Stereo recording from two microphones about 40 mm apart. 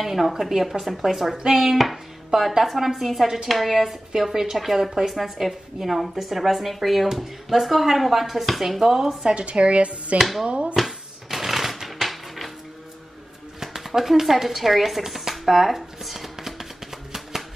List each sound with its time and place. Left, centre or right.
0.0 s a woman's voice: centre
9.2 s speech: right
10.1 s a woman's voice: centre
10.4 s speech: right
10.8 s typewriter: centre
13.6 s speech: centre